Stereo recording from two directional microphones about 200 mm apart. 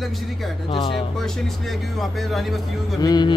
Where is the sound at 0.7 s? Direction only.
25° left (ahead or behind).